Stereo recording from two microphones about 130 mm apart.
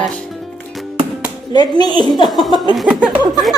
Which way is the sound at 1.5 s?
35° left (ahead or behind).